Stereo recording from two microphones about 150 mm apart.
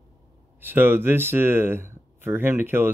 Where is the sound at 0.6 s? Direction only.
15° right (ahead or behind).